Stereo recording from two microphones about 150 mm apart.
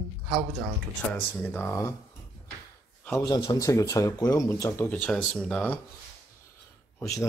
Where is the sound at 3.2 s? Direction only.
25° left (ahead or behind); by 5.8 s 10° left (ahead or behind).